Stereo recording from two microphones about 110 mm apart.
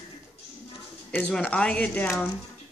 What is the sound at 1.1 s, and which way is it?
Speech, 15° left (ahead or behind).